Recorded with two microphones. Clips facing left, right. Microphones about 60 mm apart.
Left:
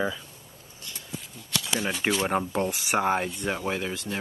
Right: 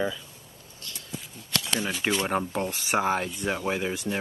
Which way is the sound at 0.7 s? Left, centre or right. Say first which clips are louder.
Even; left.